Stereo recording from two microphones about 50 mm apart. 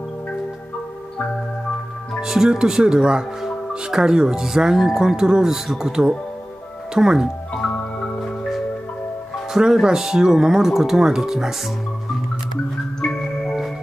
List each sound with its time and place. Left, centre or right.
2.1 s speech: centre
7.5 s music: left
9.5 s speech: centre
13.0 s music: centre